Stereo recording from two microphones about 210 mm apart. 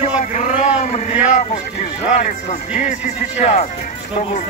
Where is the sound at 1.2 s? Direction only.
35° left (ahead or behind).